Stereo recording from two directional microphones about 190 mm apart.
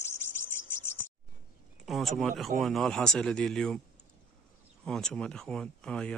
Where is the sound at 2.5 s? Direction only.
Centre (ahead or behind).